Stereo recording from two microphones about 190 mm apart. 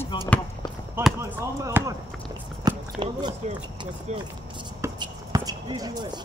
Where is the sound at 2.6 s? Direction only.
20° right (ahead or behind).